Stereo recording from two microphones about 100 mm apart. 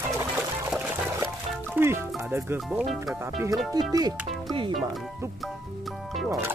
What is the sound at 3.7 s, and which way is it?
Speech, 40° right (ahead or behind).